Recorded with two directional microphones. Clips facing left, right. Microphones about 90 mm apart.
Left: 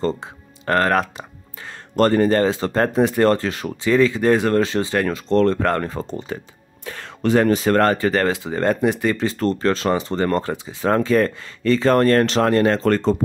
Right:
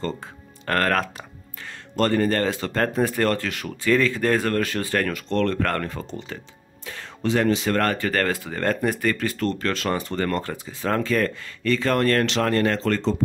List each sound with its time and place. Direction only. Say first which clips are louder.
0.0 s speech: left 6 dB; 20° left (ahead or behind)
1.1 s a sound: left 3 dB; 30° left (ahead or behind)
2.2 s speech: left 5 dB; 25° left (ahead or behind)
3.8 s speech: left 4 dB; 15° left (ahead or behind)
5.9 s speech: left 5 dB; 35° left (ahead or behind)
6.8 s music: left 4 dB; 50° left (ahead or behind)
7.2 s speech: left 5 dB; 40° left (ahead or behind); by 8.9 s 15° left (ahead or behind)
9.1 s speech: left 4 dB; 25° left (ahead or behind)
12.8 s speech: left 5 dB; 45° left (ahead or behind)